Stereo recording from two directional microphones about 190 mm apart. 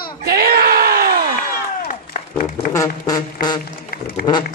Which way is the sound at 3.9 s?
50° left (ahead or behind).